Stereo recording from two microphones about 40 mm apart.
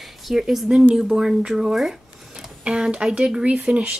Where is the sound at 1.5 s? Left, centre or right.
Centre.